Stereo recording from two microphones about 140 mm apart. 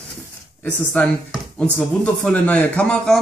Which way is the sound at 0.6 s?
10° left (ahead or behind).